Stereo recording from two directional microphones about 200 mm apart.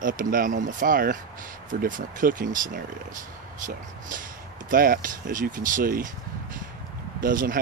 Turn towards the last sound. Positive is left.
turn(degrees=-45)  # may be behind; listen again after turning